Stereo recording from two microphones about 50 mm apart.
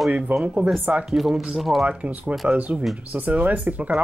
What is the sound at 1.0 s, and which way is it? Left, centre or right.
Speech, centre.